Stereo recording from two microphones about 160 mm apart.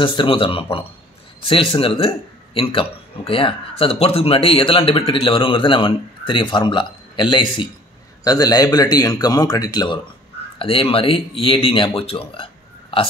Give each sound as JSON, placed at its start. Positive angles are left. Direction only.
{"t": 0.0, "sound": "a man's voice", "side_deg": 30}